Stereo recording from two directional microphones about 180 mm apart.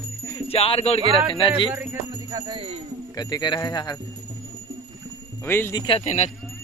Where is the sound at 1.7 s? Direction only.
15° right (ahead or behind); by 2.8 s 30° right (ahead or behind).